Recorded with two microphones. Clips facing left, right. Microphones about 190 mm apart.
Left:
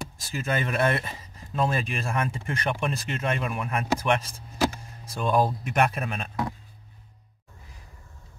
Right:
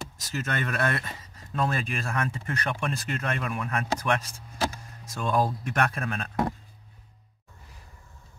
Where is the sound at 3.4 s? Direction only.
10° left (ahead or behind).